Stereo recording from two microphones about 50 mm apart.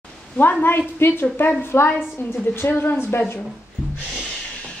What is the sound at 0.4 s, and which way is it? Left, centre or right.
A woman's voice, left.